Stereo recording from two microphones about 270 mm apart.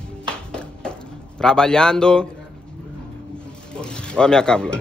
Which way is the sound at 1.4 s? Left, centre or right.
Centre.